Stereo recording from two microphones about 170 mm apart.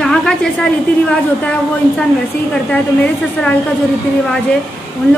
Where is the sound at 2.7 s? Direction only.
10° left (ahead or behind).